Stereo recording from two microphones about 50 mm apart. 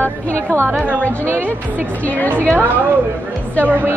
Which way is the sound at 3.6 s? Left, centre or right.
Right.